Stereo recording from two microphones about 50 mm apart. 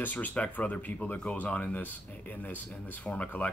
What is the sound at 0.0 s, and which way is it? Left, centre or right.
Speech, left.